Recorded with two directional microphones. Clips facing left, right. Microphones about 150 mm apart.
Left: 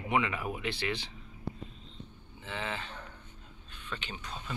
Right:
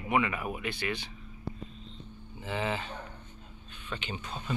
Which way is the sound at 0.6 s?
25° left (ahead or behind).